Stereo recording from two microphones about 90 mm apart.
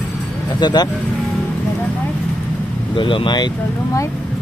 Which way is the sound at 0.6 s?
50° left (ahead or behind).